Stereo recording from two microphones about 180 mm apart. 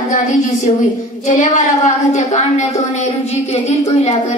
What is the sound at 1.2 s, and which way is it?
A woman's voice, 40° left (ahead or behind).